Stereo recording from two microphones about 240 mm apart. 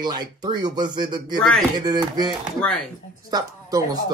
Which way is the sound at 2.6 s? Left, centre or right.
Centre.